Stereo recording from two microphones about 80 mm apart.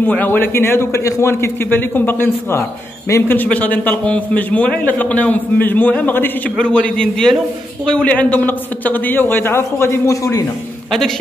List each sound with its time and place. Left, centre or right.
0.0 s a man's voice: left
3.4 s a man's voice: centre
6.6 s a man's voice: centre; by 10.4 s left